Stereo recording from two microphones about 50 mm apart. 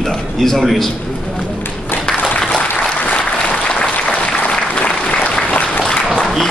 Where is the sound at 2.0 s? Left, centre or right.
Centre.